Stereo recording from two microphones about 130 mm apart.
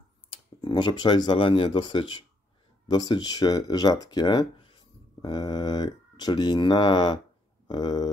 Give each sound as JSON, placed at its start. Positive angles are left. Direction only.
{"t": 0.3, "sound": "speech", "side_deg": 40}